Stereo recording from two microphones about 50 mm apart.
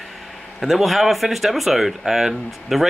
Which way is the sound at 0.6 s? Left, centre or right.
Centre.